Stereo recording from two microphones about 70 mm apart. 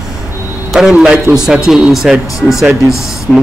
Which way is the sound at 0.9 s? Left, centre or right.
Centre.